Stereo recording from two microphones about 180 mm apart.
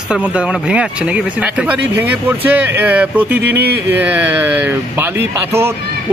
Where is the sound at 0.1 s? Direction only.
5° right (ahead or behind).